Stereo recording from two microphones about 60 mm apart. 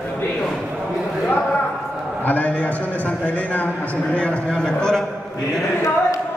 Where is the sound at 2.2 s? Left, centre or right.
Left; by 5.0 s centre.